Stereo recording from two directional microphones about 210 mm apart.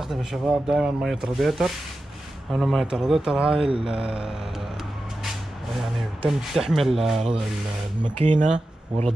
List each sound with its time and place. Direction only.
0.0 s speech: centre (ahead or behind)
3.5 s speech: 25° right (ahead or behind)
5.9 s speech: centre (ahead or behind)
8.2 s speech: 35° right (ahead or behind)